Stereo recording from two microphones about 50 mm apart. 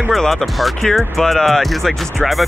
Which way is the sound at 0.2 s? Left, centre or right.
Centre.